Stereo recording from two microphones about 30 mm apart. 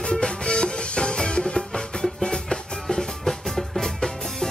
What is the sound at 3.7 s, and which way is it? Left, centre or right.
Music, centre.